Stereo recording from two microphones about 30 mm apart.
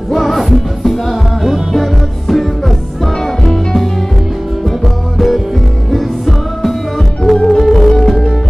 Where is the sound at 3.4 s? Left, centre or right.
Centre.